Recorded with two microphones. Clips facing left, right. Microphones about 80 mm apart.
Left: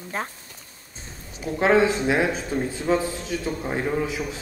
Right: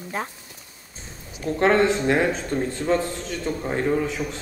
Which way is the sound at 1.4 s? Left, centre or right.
Centre.